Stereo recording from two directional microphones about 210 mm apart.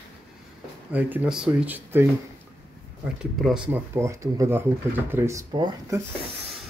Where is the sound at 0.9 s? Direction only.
5° right (ahead or behind).